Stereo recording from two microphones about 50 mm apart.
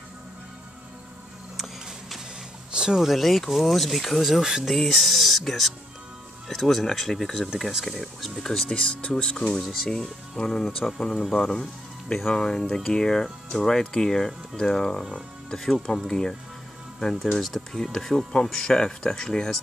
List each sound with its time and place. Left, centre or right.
1.6 s music: centre
2.7 s speech: centre
4.6 s speech: centre
7.4 s speech: centre
9.7 s speech: centre